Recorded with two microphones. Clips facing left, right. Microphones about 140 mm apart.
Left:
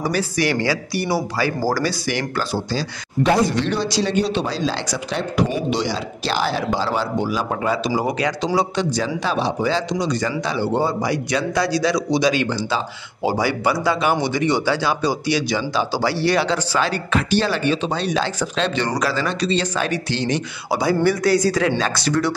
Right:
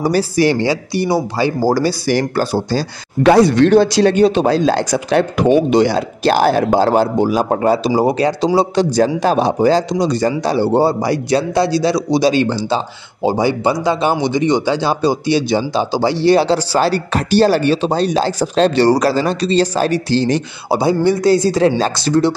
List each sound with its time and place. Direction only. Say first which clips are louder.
0.0 s speech: right 7 dB; 35° right (ahead or behind)
3.2 s speech: right 8 dB; 75° right (ahead or behind); by 8.5 s 35° right (ahead or behind)
8.7 s speech: right 8 dB; 45° right (ahead or behind); by 22.3 s 25° right (ahead or behind)